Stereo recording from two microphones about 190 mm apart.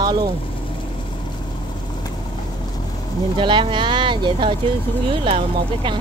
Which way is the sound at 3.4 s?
25° right (ahead or behind).